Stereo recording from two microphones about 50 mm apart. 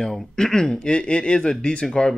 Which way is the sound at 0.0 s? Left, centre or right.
Centre.